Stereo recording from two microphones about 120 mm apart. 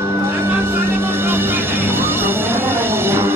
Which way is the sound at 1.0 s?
20° right (ahead or behind).